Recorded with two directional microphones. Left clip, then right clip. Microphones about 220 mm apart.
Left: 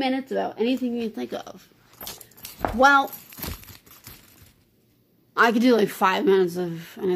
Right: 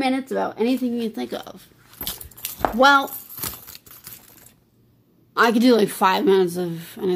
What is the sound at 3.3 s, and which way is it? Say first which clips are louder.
Crumpling: right 3 dB; 15° left (ahead or behind).